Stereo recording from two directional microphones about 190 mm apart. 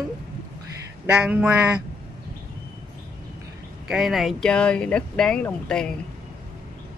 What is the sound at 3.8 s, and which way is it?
Speech, centre (ahead or behind).